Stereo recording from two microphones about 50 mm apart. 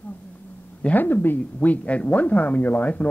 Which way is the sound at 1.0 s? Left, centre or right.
Left.